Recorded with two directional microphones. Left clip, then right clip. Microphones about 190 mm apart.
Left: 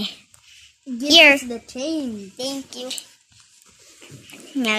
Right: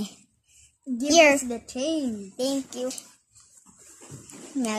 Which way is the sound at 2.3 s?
50° right (ahead or behind).